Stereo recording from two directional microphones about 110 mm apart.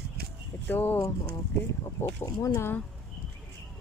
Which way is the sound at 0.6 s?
20° left (ahead or behind).